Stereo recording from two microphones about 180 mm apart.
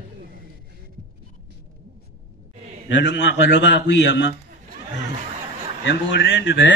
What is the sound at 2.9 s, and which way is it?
A man's voice, 85° left.